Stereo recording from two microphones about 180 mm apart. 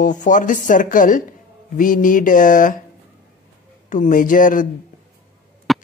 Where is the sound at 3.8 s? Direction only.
45° left (ahead or behind).